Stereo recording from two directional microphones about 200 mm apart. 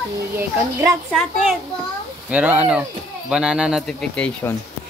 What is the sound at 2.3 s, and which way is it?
Speech, 5° right (ahead or behind).